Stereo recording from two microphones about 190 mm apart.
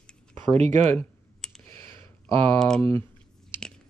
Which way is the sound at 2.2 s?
25° right (ahead or behind).